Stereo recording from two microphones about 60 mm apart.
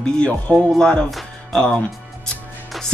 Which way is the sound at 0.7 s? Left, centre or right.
Centre.